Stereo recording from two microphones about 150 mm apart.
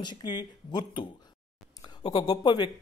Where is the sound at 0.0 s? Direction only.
30° left (ahead or behind).